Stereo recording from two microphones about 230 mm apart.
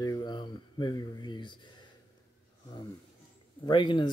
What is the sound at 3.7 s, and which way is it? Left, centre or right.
Speech, left.